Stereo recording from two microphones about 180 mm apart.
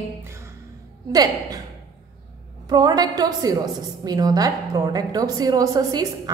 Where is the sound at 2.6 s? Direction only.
20° right (ahead or behind).